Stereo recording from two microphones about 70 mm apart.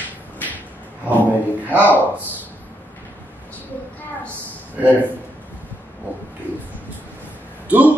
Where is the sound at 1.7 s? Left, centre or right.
Right.